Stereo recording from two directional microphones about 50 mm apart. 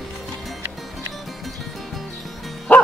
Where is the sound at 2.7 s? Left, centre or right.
Left.